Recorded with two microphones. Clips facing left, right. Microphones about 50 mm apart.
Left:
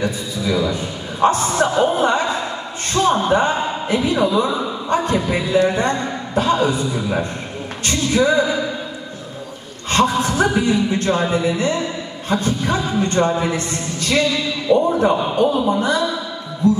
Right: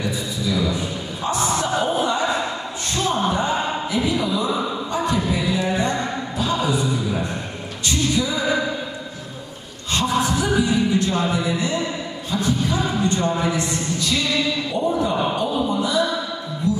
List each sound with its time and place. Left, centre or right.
0.6 s a sound: left
2.0 s speech: left
3.3 s a man's voice: left
7.8 s speech: left
9.8 s a man's voice: left